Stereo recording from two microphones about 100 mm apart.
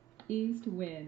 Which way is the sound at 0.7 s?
15° left (ahead or behind).